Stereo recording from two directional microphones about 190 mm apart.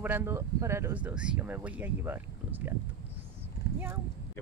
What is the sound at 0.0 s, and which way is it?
Speech, 10° right (ahead or behind).